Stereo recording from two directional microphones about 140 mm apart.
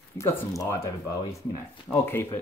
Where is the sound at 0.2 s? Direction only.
20° left (ahead or behind).